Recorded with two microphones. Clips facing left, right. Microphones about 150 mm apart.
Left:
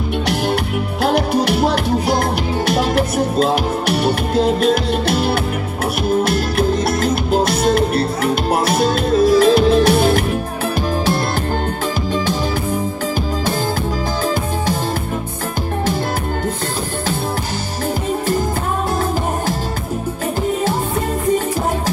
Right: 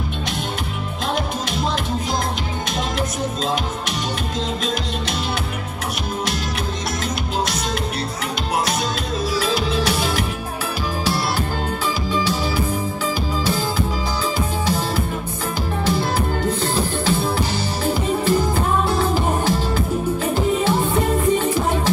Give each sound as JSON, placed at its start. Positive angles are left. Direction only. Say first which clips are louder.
{"t": 1.0, "sound": "music", "louder": "left 9 dB", "side_deg": 70}
{"t": 7.3, "sound": "music", "louder": "left 10 dB", "side_deg": 55}